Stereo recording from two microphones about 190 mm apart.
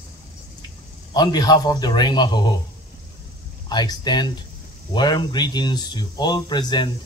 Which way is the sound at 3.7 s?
20° left (ahead or behind).